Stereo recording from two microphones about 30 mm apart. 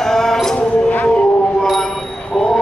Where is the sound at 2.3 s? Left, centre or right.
Centre.